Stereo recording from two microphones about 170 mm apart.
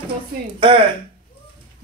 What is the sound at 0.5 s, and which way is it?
Speech, 30° right (ahead or behind).